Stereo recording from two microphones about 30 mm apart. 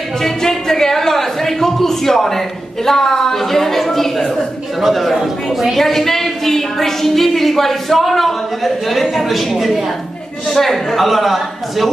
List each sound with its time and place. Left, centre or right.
0.2 s speech: centre
4.8 s a woman's voice: centre
5.8 s a woman's voice: centre
10.5 s a woman's voice: centre